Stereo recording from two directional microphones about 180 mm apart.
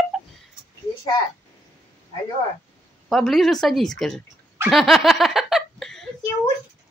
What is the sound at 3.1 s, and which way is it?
Speech, centre (ahead or behind).